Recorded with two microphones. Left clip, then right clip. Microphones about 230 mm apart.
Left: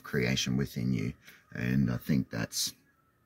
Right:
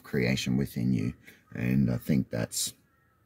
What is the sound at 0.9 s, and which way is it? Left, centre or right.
Speech, left.